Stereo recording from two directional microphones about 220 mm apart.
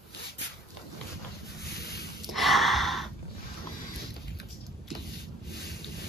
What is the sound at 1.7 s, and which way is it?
Boat, 45° left (ahead or behind).